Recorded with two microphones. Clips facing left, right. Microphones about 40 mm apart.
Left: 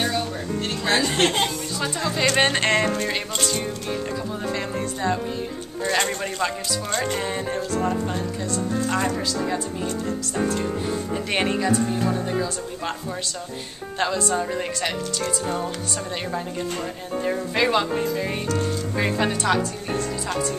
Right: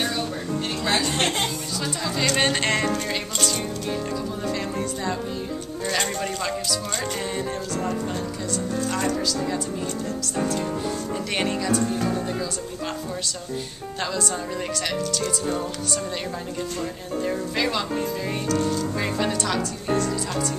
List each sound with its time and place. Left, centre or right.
0.9 s speech: left
1.8 s speech: centre
13.9 s speech: centre
17.1 s speech: centre
19.9 s speech: centre